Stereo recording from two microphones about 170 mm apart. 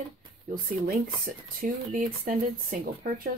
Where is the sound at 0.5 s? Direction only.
55° right (ahead or behind).